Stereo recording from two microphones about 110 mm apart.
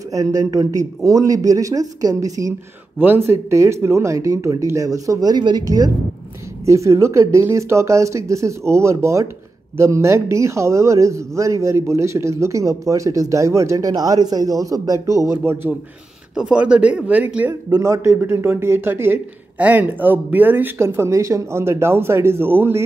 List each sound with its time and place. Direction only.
0.1 s speech: 30° right (ahead or behind)
3.0 s speech: 20° right (ahead or behind)
16.3 s speech: 10° right (ahead or behind)
17.6 s speech: 35° right (ahead or behind)